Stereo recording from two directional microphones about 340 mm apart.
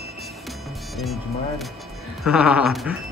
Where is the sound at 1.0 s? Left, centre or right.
Centre.